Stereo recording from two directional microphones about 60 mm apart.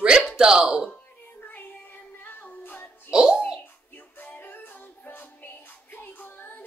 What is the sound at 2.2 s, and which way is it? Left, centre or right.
Music, left.